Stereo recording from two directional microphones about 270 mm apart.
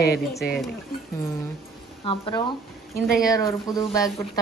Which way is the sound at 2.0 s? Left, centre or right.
Centre.